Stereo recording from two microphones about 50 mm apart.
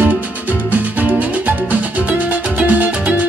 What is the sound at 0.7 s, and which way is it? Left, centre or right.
Music, right.